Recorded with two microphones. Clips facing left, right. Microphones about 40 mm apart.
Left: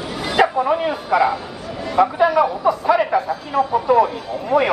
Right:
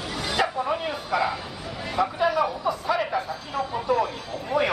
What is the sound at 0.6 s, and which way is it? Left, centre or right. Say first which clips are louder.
Speech: left 8 dB; left.